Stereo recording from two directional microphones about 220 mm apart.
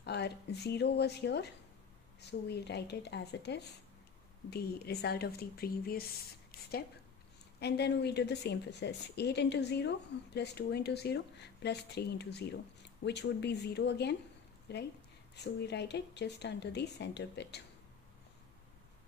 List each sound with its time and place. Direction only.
0.0 s a woman's voice: 50° left (ahead or behind)
7.6 s a woman's voice: 50° left (ahead or behind)
15.3 s a woman's voice: 50° left (ahead or behind)